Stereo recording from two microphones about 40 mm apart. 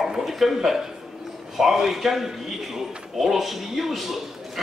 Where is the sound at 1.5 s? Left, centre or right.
Centre.